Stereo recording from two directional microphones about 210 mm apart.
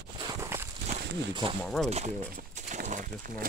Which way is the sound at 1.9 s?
35° right (ahead or behind).